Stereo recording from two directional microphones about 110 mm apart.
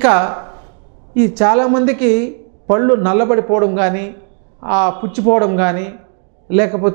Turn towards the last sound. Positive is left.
turn(degrees=-15)  # may be behind; listen again after turning